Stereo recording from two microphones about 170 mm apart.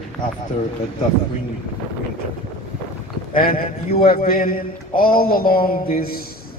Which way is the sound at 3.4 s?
60° left (ahead or behind).